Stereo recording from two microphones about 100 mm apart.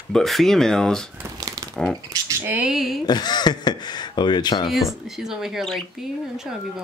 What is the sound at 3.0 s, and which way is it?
Speech, 45° left (ahead or behind).